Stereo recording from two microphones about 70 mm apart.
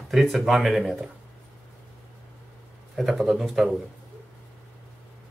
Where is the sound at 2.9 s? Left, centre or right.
Centre.